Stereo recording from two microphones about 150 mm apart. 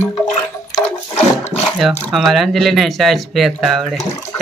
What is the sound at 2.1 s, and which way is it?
Speech, centre (ahead or behind).